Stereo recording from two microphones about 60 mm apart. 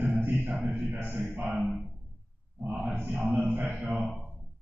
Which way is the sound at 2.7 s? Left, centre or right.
Right.